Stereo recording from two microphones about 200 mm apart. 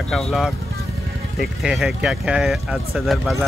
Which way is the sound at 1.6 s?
Centre (ahead or behind).